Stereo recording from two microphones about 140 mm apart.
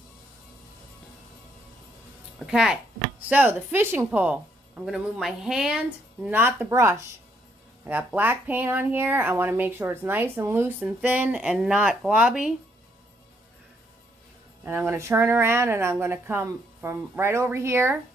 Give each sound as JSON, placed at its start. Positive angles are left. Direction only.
{"t": 2.3, "sound": "speech", "side_deg": -5}
{"t": 14.6, "sound": "speech", "side_deg": -15}